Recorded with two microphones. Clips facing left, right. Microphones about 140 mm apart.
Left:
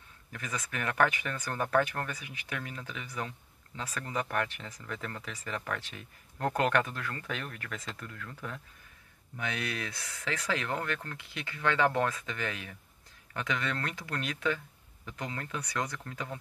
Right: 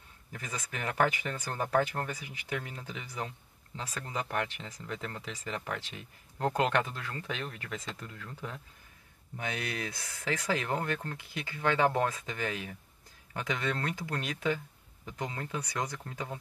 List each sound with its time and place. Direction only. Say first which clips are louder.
0.3 s speech: left 2 dB; 25° right (ahead or behind)
9.4 s speech: even; 30° right (ahead or behind)